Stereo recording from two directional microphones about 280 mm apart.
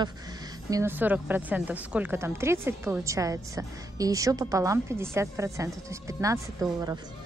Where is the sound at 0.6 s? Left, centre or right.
Centre.